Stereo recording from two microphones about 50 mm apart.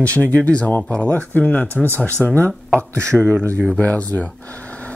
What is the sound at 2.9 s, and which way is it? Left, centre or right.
Speech, right.